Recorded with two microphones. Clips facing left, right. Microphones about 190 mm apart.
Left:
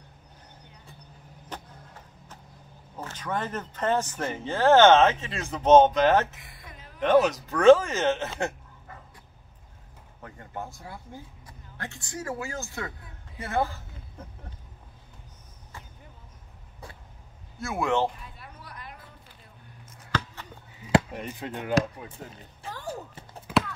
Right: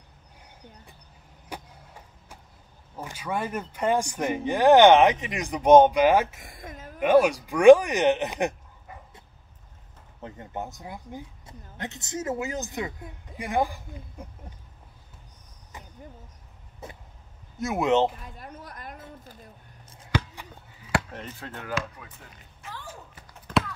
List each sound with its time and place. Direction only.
1.5 s a sound: 10° right (ahead or behind)
3.0 s speech: 10° right (ahead or behind)
6.3 s a sound: 45° right (ahead or behind)
7.0 s speech: 10° right (ahead or behind)
10.2 s speech: 20° right (ahead or behind)
16.8 s vehicle: 20° right (ahead or behind)
17.6 s speech: 20° right (ahead or behind)
18.2 s a sound: 45° right (ahead or behind)
20.1 s a sound: 15° right (ahead or behind)
20.8 s speech: 10° left (ahead or behind)
21.7 s chop: 30° left (ahead or behind)
23.4 s clip-clop: centre (ahead or behind)